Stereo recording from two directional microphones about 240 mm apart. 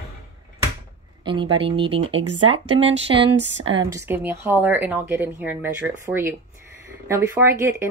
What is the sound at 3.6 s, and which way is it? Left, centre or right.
Speech, centre.